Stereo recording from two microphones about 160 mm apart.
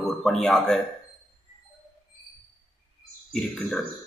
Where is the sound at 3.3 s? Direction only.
Centre (ahead or behind).